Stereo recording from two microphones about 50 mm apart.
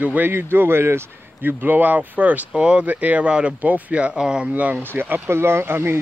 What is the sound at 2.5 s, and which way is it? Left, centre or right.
Speech, centre.